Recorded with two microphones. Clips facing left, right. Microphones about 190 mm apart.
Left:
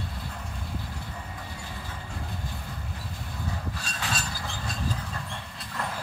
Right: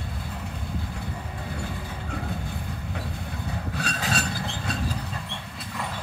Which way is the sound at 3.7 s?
65° right (ahead or behind).